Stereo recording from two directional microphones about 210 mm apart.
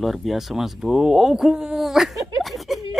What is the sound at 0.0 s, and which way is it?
Speech, centre (ahead or behind).